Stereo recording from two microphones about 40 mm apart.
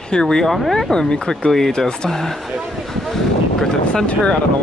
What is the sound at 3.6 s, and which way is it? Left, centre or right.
Vehicle, centre.